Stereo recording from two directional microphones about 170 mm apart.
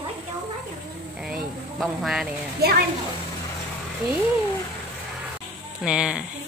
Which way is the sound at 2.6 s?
65° right (ahead or behind).